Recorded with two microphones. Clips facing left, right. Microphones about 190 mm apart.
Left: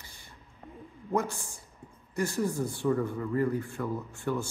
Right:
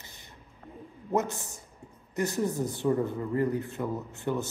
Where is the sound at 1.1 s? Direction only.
20° right (ahead or behind).